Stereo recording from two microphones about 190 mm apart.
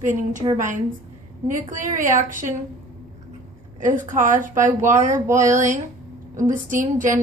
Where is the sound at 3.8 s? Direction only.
40° right (ahead or behind).